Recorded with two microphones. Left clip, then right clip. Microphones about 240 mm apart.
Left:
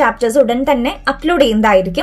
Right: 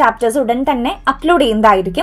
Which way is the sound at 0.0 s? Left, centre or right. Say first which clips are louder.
Left 1 dB; centre.